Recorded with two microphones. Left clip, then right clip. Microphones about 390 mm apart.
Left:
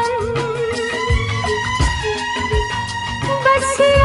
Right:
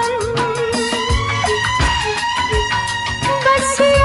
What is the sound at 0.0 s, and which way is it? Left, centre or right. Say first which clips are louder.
Music: right 1 dB; left.